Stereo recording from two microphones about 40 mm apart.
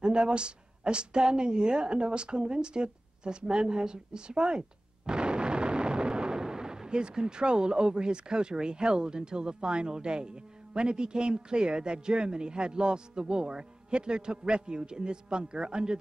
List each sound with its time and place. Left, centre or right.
0.0 s a woman's voice: right